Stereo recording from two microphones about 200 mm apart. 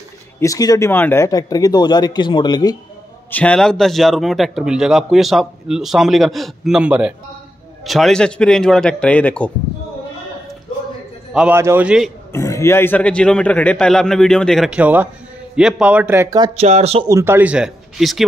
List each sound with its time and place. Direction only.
0.4 s speech: 15° left (ahead or behind)
3.3 s a man's voice: 5° left (ahead or behind)
11.3 s speech: 10° right (ahead or behind)
12.3 s a man's voice: 15° left (ahead or behind); by 17.0 s 30° right (ahead or behind)
17.1 s speech: 10° right (ahead or behind)